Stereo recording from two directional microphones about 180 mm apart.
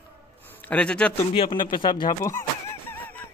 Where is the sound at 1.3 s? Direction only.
25° left (ahead or behind).